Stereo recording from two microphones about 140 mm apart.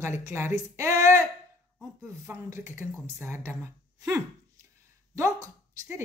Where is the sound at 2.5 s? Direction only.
15° right (ahead or behind).